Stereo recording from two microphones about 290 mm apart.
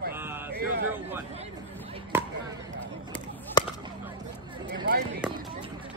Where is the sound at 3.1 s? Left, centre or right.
Centre.